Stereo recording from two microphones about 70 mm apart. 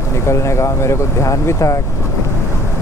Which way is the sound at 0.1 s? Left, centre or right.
Left.